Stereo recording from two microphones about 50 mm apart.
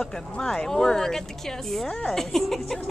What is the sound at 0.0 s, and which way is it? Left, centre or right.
Speech, centre.